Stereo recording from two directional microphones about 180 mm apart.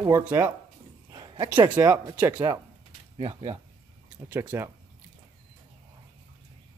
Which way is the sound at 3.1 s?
30° right (ahead or behind).